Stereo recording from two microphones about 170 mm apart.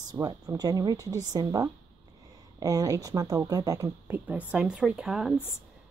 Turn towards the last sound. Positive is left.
turn(degrees=-5)  # may be behind; listen again after turning